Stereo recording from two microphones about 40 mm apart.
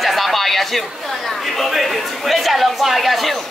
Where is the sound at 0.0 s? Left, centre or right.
Centre.